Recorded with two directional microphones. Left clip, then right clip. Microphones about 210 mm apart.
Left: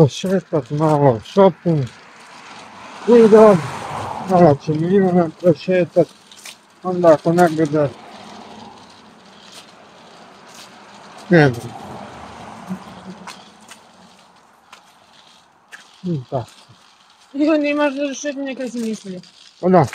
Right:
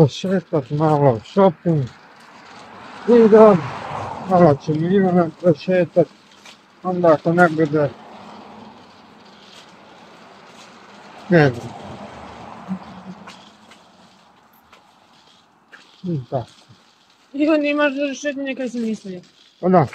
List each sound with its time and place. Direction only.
0.0 s speech: 10° left (ahead or behind)
3.1 s speech: 40° left (ahead or behind)
3.5 s a sound: 50° left (ahead or behind)
4.3 s speech: 10° left (ahead or behind)
11.2 s speech: 30° left (ahead or behind)
12.7 s a sound: 55° left (ahead or behind)
17.4 s speech: 10° right (ahead or behind)
19.6 s speech: 25° left (ahead or behind)